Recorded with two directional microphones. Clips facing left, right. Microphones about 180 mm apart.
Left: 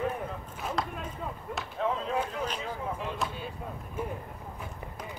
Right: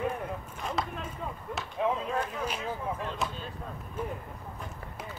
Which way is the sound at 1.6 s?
Centre (ahead or behind).